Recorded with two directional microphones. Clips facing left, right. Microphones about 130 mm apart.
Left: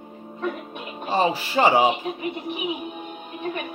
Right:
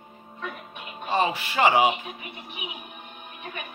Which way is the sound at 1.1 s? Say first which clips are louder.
Left 3 dB; 30° left (ahead or behind).